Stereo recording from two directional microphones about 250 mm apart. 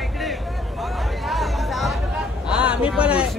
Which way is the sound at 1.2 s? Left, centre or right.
Centre.